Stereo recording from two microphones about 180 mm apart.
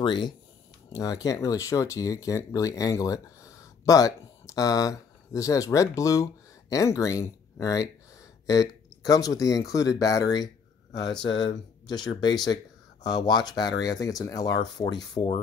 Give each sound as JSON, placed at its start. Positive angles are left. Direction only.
{"t": 0.0, "sound": "speech", "side_deg": 25}